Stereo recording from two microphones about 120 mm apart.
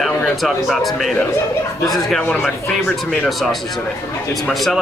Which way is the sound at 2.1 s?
10° left (ahead or behind).